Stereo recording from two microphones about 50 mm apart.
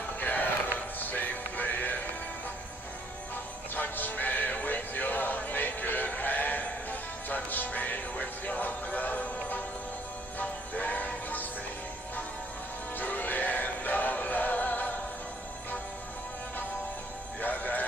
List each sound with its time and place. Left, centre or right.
0.2 s music: left
3.7 s music: left
12.9 s music: left
17.4 s music: left